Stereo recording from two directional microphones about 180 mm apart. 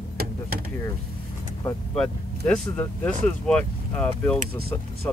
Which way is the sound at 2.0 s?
5° left (ahead or behind).